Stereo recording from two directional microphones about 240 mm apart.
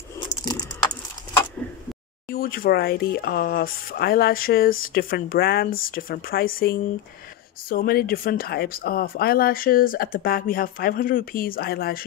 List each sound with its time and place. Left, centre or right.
0.2 s typing: centre
2.2 s speech: left